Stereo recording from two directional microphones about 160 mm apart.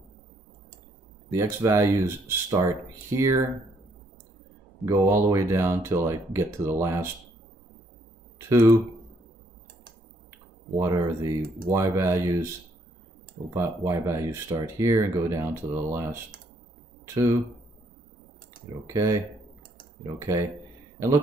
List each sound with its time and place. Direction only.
1.3 s speech: 15° right (ahead or behind)
4.8 s speech: 15° right (ahead or behind)
8.5 s speech: 20° right (ahead or behind)
10.8 s speech: 20° right (ahead or behind)
13.5 s speech: 20° right (ahead or behind)
18.9 s speech: 20° right (ahead or behind)
20.2 s speech: 20° right (ahead or behind)